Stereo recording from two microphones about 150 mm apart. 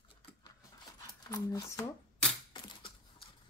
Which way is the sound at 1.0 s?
25° left (ahead or behind).